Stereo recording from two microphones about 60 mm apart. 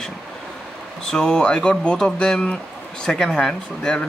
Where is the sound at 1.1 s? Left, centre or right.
Centre.